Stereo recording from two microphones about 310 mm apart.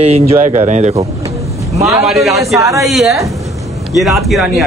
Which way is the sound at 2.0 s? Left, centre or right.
Centre.